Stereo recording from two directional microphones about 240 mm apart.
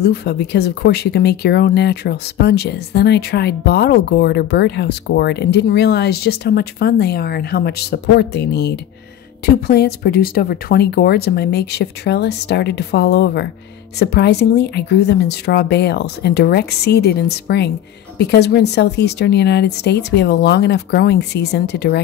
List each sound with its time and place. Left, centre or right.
0.0 s speech: left